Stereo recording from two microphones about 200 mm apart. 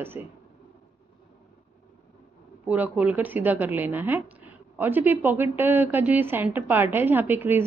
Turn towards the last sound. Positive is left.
turn(degrees=-10)  # may be behind; listen again after turning